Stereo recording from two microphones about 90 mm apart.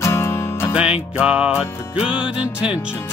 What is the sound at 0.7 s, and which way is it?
Music, 10° right (ahead or behind).